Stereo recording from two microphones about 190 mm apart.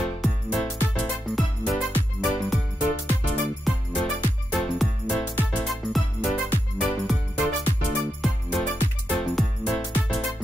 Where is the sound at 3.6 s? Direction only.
Centre (ahead or behind).